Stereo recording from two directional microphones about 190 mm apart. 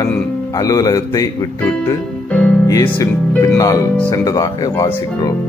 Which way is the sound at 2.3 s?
5° left (ahead or behind).